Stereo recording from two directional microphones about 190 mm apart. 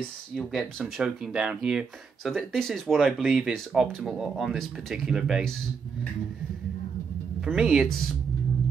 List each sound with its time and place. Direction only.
0.4 s speech: centre (ahead or behind)
7.3 s speech: 5° right (ahead or behind)